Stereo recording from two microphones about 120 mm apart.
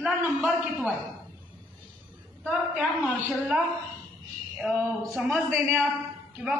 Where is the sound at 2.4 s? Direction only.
10° right (ahead or behind).